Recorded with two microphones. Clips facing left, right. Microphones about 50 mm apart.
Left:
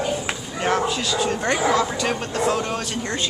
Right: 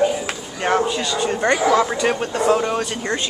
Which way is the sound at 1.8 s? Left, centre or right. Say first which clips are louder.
Right 4 dB; centre.